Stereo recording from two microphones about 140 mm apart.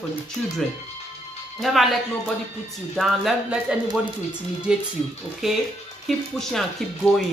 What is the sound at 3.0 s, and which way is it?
Speech, centre (ahead or behind).